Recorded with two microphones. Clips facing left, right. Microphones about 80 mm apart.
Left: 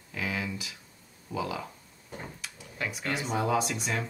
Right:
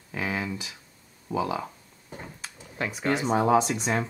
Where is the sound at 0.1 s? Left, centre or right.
Right.